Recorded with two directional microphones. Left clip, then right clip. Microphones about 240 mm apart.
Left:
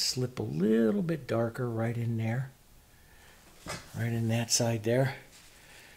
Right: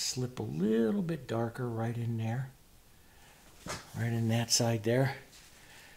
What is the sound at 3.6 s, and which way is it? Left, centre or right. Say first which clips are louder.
Speech: left 1 dB; centre.